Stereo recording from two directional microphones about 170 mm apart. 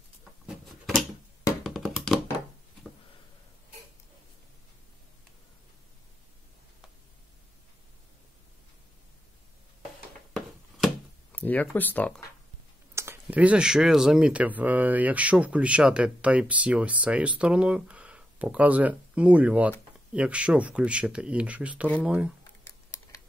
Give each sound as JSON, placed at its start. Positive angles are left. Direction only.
{"t": 0.5, "sound": "a sound", "side_deg": 0}
{"t": 11.3, "sound": "speech", "side_deg": 10}
{"t": 12.9, "sound": "speech", "side_deg": -15}